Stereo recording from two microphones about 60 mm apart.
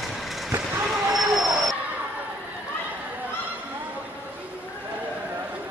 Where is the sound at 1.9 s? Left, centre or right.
Right.